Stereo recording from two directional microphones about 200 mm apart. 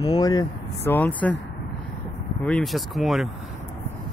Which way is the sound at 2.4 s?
5° left (ahead or behind).